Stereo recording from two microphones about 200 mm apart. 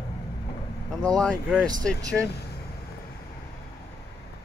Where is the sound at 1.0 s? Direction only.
Centre (ahead or behind).